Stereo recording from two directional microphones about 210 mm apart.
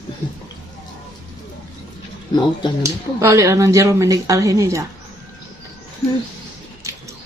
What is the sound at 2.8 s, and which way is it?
Speech, 15° right (ahead or behind).